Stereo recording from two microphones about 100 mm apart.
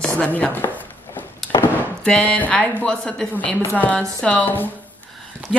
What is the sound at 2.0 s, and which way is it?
Speech, 10° left (ahead or behind).